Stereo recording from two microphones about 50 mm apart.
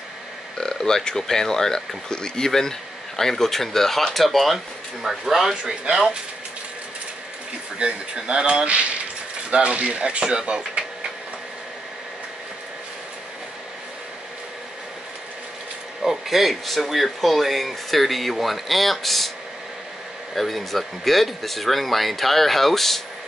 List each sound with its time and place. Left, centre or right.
0.6 s speech: centre
7.8 s speech: centre
16.0 s speech: centre
20.3 s speech: centre